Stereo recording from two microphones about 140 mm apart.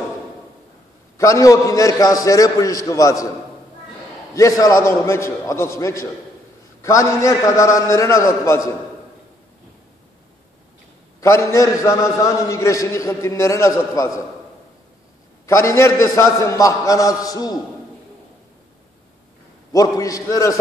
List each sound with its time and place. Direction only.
1.1 s a man's voice: 20° left (ahead or behind)
4.4 s a man's voice: 25° left (ahead or behind)
11.1 s a man's voice: 20° left (ahead or behind)
15.4 s a man's voice: 20° left (ahead or behind)
20.0 s a man's voice: 25° left (ahead or behind)